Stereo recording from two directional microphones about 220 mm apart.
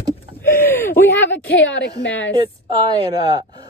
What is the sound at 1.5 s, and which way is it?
Speech, 60° left (ahead or behind).